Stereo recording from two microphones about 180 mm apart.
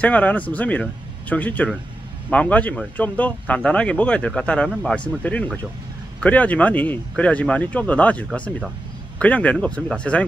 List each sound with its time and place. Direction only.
0.0 s speech: 10° left (ahead or behind)